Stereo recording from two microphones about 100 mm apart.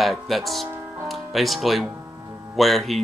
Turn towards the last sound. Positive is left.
turn(degrees=0)  # may be behind; listen again after turning